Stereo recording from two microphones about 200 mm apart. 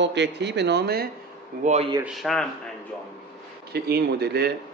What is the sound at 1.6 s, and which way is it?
Speech, 35° right (ahead or behind).